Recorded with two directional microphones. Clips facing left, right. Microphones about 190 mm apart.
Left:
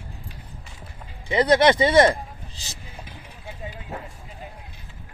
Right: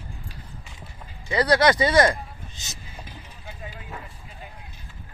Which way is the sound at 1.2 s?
25° left (ahead or behind).